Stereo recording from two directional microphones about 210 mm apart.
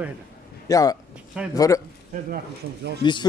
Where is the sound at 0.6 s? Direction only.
15° left (ahead or behind).